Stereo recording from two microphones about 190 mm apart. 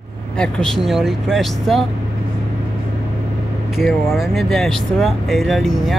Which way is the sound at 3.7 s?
Centre (ahead or behind).